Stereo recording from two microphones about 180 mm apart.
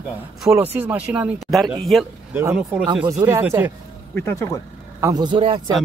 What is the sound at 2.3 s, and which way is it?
Speech, 10° right (ahead or behind).